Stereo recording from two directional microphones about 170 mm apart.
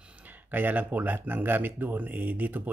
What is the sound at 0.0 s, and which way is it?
Speech, 10° right (ahead or behind).